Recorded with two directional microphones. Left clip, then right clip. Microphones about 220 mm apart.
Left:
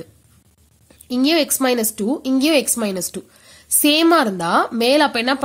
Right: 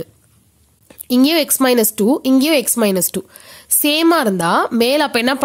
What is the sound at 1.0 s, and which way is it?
A woman's voice, 35° right (ahead or behind).